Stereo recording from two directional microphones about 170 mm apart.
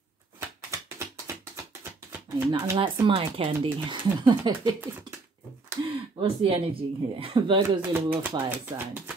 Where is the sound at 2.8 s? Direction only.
35° right (ahead or behind).